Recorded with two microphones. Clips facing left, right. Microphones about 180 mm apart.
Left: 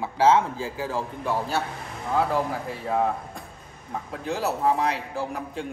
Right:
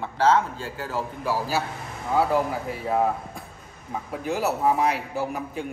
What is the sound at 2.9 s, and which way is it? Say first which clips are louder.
A man's voice: right 1 dB; 5° right (ahead or behind).